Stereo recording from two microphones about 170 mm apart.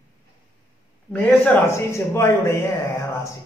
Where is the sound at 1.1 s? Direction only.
15° left (ahead or behind).